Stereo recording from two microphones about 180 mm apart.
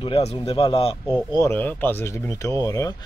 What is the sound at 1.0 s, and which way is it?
Speech, 15° left (ahead or behind).